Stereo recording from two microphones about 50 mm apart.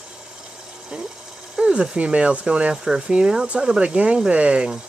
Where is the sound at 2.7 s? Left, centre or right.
Centre.